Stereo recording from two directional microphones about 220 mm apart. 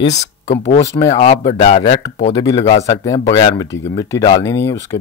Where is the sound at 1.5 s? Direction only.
30° left (ahead or behind).